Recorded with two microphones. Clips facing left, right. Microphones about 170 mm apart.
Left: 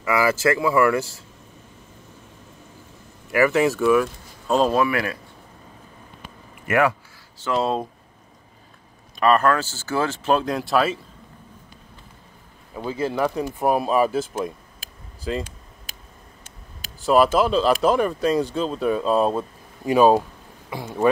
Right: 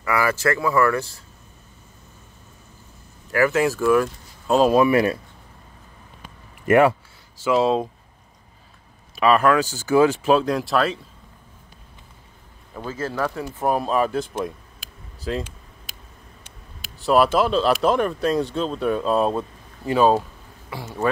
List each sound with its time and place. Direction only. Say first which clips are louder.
0.0 s speech: left 2 dB; 20° left (ahead or behind)
3.3 s speech: left 1 dB; 5° left (ahead or behind)
4.7 s speech: right 5 dB; 25° right (ahead or behind)
6.7 s speech: right 4 dB; 30° right (ahead or behind)
7.3 s speech: right 4 dB; 5° right (ahead or behind)
9.1 s speech: right 1 dB; 5° right (ahead or behind)
10.3 s speech: right 1 dB; centre (ahead or behind)
12.7 s speech: left 3 dB; 15° left (ahead or behind)
17.0 s speech: even; centre (ahead or behind)
19.9 s speech: left 2 dB; 15° left (ahead or behind)